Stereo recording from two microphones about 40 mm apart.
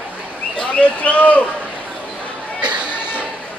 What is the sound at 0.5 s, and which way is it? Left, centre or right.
Bird, left.